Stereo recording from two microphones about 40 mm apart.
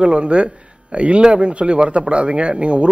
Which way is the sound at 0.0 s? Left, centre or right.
Right.